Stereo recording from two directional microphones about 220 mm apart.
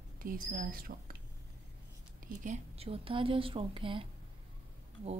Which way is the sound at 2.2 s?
35° right (ahead or behind).